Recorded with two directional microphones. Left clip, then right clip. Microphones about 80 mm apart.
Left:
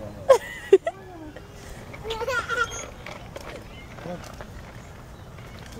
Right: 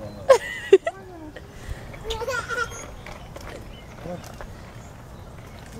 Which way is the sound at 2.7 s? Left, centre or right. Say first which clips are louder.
Left 2 dB; left.